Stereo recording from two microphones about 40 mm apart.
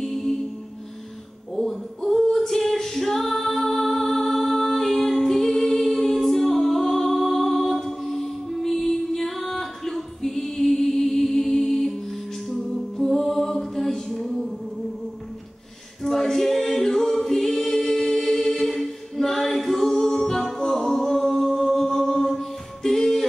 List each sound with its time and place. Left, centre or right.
0.0 s music: centre
1.5 s a sound: centre
2.0 s singing: centre
12.4 s music: centre
16.0 s choir: centre